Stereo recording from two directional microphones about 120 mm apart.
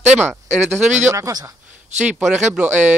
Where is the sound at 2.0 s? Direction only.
10° right (ahead or behind).